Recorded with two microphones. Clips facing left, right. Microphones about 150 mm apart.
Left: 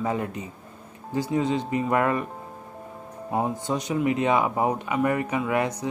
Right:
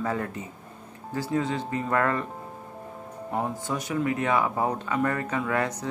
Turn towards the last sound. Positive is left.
turn(degrees=15)  # may be behind; listen again after turning